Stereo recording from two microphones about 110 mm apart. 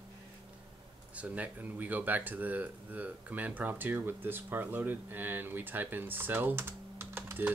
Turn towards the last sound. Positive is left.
turn(degrees=-20)  # may be behind; listen again after turning